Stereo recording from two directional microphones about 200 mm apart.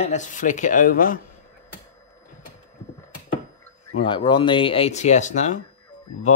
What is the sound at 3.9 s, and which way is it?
Speech, 25° left (ahead or behind).